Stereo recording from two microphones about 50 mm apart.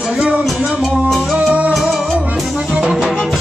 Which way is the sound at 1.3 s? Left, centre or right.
Centre.